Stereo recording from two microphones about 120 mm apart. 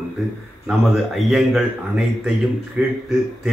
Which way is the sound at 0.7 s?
Centre (ahead or behind).